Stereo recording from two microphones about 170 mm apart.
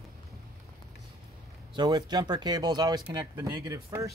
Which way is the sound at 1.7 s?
25° right (ahead or behind).